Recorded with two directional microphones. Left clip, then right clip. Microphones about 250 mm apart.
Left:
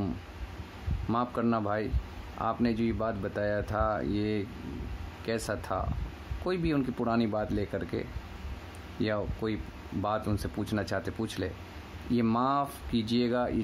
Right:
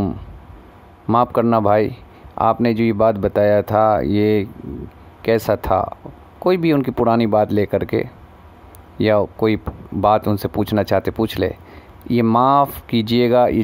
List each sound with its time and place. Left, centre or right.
1.0 s speech: right